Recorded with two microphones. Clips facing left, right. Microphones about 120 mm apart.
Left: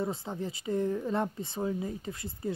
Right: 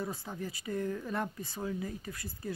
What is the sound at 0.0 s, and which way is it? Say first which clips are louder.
Speech: left 5 dB; 25° left (ahead or behind).